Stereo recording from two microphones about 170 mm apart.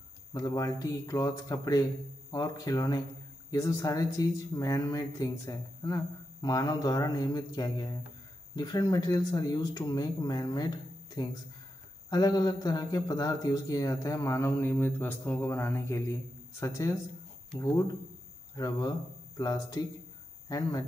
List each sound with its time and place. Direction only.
0.3 s a man's voice: 20° left (ahead or behind)
18.6 s speech: 20° left (ahead or behind)